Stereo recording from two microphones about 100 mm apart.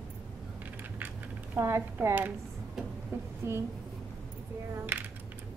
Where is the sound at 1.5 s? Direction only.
25° right (ahead or behind).